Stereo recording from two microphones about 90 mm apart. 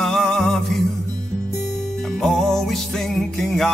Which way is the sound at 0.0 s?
5° left (ahead or behind).